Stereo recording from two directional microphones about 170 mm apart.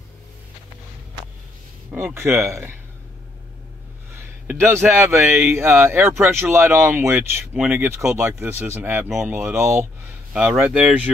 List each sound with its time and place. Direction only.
1.9 s speech: 10° right (ahead or behind)
4.5 s speech: 15° right (ahead or behind)
9.1 s speech: centre (ahead or behind)
9.6 s speech: 15° right (ahead or behind)